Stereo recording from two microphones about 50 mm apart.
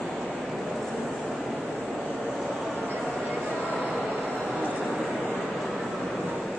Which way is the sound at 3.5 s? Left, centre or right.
Left.